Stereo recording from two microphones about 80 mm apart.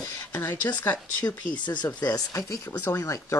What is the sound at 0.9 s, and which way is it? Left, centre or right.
Speech, left.